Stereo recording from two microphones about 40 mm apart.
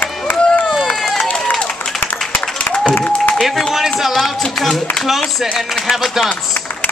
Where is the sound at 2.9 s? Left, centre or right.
Left.